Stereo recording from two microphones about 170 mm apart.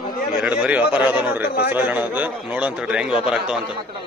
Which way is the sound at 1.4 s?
65° left (ahead or behind).